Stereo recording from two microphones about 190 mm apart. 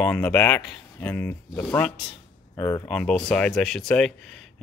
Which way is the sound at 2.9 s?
5° left (ahead or behind).